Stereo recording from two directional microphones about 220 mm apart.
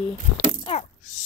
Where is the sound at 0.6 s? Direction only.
30° left (ahead or behind).